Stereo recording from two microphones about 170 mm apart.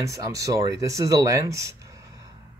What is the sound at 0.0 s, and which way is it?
Speech, 20° right (ahead or behind).